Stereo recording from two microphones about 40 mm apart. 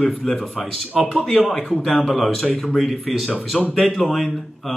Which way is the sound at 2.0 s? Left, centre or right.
Centre.